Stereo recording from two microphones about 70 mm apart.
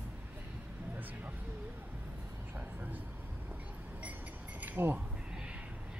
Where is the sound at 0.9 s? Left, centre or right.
Right.